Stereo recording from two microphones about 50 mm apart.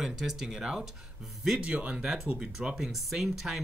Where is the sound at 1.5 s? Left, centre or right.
Right; by 3.6 s centre.